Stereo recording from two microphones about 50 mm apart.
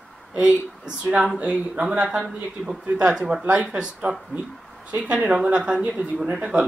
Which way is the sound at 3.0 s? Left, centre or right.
Centre.